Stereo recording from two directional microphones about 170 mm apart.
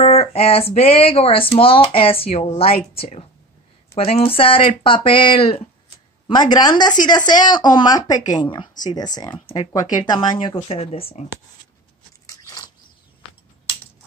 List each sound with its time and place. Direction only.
0.0 s a woman's voice: 40° left (ahead or behind)